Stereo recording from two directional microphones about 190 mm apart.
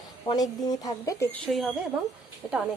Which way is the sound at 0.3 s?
20° left (ahead or behind).